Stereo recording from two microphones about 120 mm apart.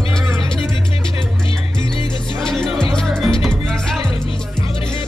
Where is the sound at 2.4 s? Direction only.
5° left (ahead or behind).